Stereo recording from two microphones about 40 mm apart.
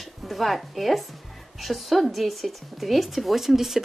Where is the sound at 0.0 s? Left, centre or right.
Centre.